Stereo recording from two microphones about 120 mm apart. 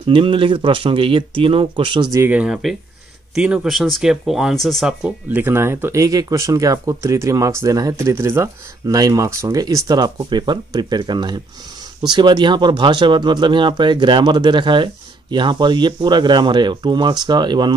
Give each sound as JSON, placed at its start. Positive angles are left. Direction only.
{"t": 0.0, "sound": "speech", "side_deg": -45}
{"t": 2.1, "sound": "speech", "side_deg": -15}
{"t": 2.4, "sound": "speech", "side_deg": -5}
{"t": 5.4, "sound": "speech", "side_deg": -20}